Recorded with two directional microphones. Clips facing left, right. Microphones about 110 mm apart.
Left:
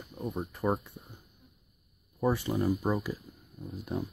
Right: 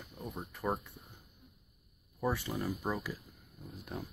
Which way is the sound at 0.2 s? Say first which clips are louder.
Left 7 dB; 20° left (ahead or behind).